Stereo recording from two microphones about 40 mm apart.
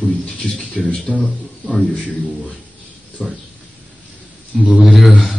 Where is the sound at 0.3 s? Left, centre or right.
Centre.